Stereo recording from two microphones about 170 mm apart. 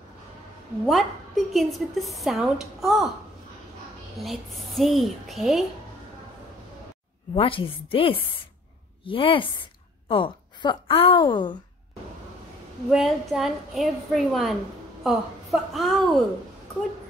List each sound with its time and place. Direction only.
0.8 s speech: centre (ahead or behind)
4.2 s speech: centre (ahead or behind)
7.3 s a woman's voice: 30° left (ahead or behind)
12.9 s speech: centre (ahead or behind)